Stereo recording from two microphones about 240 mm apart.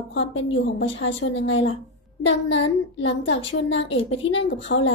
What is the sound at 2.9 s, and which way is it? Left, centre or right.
A woman's voice, left.